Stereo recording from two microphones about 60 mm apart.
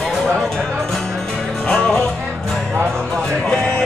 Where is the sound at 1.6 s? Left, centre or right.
Centre.